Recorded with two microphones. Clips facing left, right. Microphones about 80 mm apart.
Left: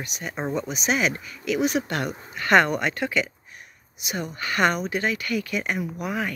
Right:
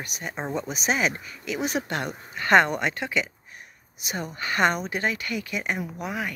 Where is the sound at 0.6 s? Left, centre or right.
Right; by 3.3 s centre.